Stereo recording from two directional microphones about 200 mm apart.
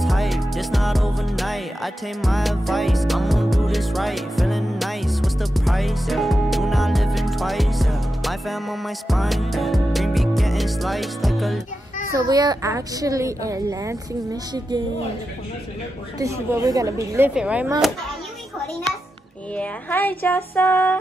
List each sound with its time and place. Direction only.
0.0 s music: centre (ahead or behind)
12.1 s a woman's voice: 20° right (ahead or behind)
16.2 s a woman's voice: 15° right (ahead or behind)
17.3 s speech: 5° right (ahead or behind)
19.5 s a sound: 10° left (ahead or behind)